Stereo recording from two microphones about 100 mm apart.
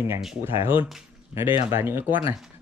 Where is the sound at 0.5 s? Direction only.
60° left (ahead or behind).